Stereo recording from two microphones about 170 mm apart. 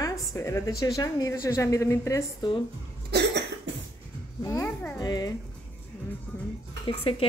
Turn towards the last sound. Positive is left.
turn(degrees=30)  # may be behind; listen again after turning